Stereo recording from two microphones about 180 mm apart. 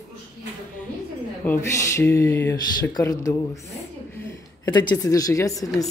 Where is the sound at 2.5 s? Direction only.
25° left (ahead or behind).